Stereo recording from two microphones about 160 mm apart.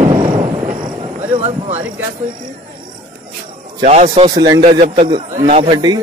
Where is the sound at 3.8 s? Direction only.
40° right (ahead or behind).